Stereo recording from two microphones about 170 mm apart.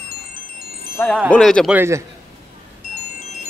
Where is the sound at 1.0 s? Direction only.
10° left (ahead or behind).